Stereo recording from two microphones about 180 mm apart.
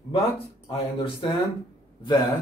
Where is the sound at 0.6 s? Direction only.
30° left (ahead or behind).